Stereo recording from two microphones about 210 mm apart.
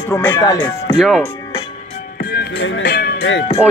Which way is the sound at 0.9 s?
Centre (ahead or behind).